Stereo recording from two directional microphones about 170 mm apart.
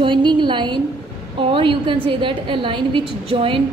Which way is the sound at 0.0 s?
30° right (ahead or behind).